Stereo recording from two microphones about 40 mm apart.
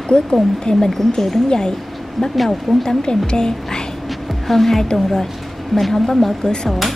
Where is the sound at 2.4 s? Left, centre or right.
Centre.